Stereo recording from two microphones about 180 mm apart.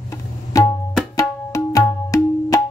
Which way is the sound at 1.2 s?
15° left (ahead or behind).